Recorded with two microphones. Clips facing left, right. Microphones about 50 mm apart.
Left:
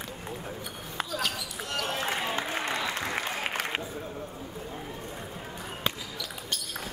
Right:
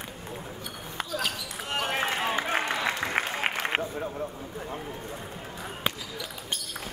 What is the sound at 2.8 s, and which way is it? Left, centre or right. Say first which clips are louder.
Applause: right 3 dB; right.